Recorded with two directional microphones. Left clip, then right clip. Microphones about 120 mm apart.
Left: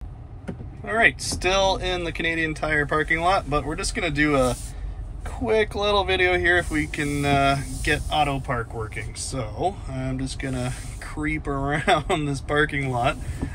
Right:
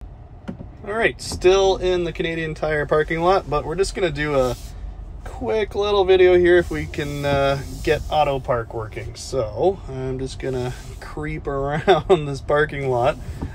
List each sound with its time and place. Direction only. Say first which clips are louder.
0.8 s speech: left 2 dB; 30° right (ahead or behind)
9.8 s speech: right 3 dB; 25° right (ahead or behind)
11.1 s speech: even; 35° right (ahead or behind)